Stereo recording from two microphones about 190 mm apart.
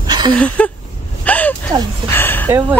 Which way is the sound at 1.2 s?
10° left (ahead or behind).